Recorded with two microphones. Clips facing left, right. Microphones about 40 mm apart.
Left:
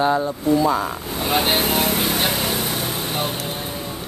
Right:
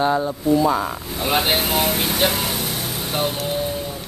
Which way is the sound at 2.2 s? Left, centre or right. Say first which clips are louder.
Right 1 dB; centre.